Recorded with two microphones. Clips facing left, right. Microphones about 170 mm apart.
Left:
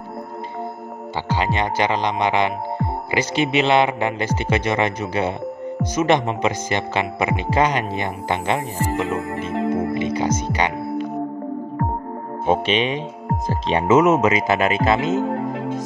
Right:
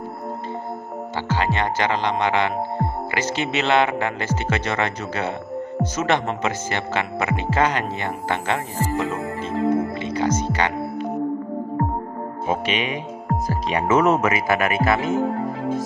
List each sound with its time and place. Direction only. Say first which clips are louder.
1.3 s speech: left 1 dB; 15° left (ahead or behind)
12.4 s speech: left 5 dB; 30° left (ahead or behind)